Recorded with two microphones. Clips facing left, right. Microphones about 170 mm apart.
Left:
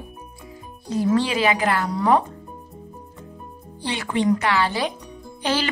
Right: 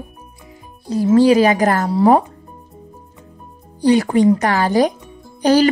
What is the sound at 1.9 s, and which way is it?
Speech, 30° right (ahead or behind).